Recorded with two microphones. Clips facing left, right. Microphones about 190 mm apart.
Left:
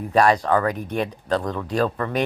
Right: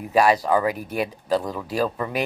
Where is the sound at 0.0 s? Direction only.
5° right (ahead or behind).